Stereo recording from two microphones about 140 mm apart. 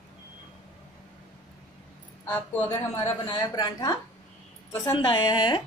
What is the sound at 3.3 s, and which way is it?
Speech, 30° left (ahead or behind).